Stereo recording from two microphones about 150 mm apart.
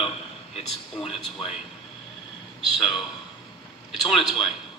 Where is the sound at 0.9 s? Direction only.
Centre (ahead or behind).